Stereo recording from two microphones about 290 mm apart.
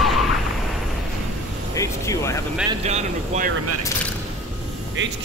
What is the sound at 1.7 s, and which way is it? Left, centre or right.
Music, centre.